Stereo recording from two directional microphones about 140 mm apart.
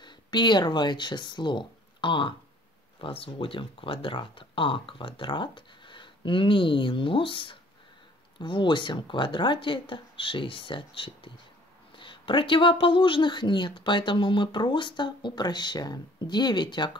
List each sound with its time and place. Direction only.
0.0 s speech: 30° left (ahead or behind)